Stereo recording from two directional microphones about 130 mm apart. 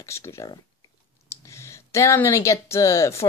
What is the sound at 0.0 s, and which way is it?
Speech, 20° left (ahead or behind).